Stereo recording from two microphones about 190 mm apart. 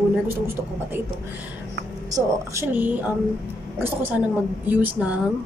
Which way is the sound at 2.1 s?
15° right (ahead or behind).